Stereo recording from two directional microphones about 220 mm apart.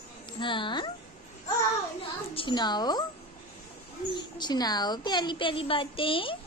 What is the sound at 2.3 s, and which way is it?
Speech, 20° left (ahead or behind).